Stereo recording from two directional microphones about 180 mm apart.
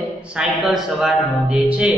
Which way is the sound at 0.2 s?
5° right (ahead or behind).